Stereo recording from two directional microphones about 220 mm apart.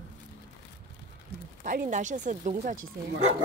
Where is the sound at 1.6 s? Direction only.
40° right (ahead or behind).